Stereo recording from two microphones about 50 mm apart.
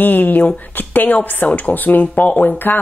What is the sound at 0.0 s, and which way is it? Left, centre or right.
Speech, left.